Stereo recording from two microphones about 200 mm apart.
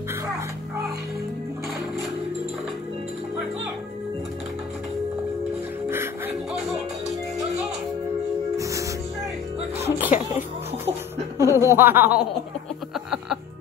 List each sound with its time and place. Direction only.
5.9 s music: 10° right (ahead or behind)
8.5 s music: 15° right (ahead or behind)
11.3 s chuckle: 15° right (ahead or behind)
12.9 s music: centre (ahead or behind)